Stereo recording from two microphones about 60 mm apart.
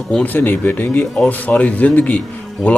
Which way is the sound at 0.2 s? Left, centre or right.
Left.